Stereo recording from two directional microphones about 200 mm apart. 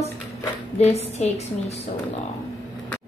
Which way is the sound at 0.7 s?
30° left (ahead or behind).